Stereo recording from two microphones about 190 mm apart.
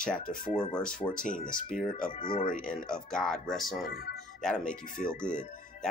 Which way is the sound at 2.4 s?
45° left (ahead or behind).